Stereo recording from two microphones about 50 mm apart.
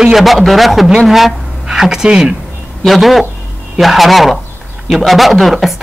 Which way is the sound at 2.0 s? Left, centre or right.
Right.